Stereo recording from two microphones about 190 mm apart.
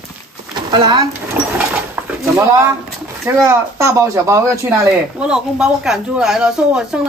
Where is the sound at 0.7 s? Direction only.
25° right (ahead or behind).